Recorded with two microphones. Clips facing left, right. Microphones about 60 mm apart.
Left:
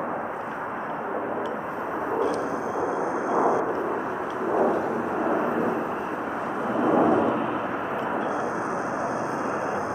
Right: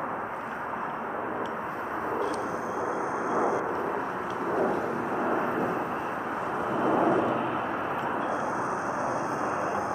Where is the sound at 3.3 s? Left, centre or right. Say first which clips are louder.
Left 5 dB; centre.